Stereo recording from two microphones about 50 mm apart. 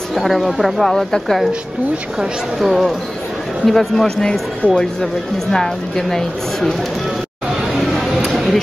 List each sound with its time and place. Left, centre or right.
0.1 s a woman's voice: centre
2.6 s a woman's voice: centre
4.6 s speech: left
5.0 s speech: centre
7.7 s a sound: centre